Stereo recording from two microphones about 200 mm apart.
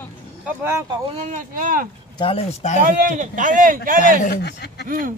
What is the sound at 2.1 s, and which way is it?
Speech, 25° left (ahead or behind).